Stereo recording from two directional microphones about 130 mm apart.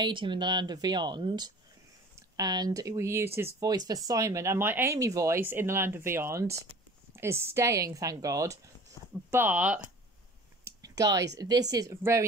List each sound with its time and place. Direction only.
0.0 s speech: 40° right (ahead or behind); by 3.5 s 20° right (ahead or behind)
3.5 s speech: 30° right (ahead or behind)
9.3 s speech: 15° right (ahead or behind)
10.6 s speech: 30° right (ahead or behind)